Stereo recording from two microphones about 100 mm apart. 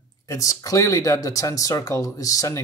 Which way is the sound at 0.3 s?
35° left (ahead or behind).